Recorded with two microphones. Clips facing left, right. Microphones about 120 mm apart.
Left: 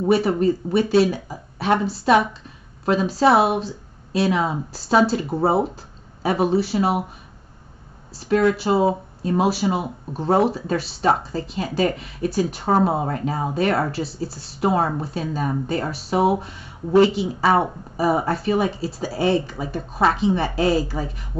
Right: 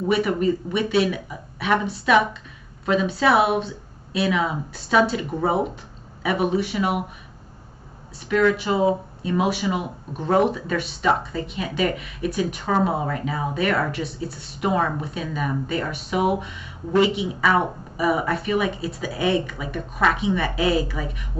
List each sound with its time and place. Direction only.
0.1 s speech: 30° left (ahead or behind)
8.3 s speech: 35° left (ahead or behind)